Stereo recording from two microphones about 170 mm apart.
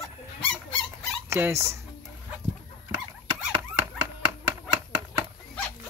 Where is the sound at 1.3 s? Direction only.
15° right (ahead or behind).